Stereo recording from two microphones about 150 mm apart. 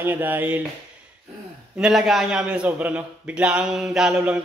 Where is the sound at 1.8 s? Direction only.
5° right (ahead or behind).